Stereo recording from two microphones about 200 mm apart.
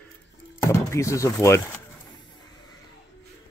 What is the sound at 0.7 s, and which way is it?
Speech, 15° left (ahead or behind).